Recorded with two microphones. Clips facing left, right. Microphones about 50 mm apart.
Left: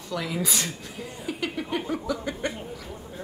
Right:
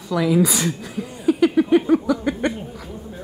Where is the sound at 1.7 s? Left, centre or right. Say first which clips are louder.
Right 11 dB; right.